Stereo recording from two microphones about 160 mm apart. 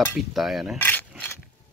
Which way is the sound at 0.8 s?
10° left (ahead or behind).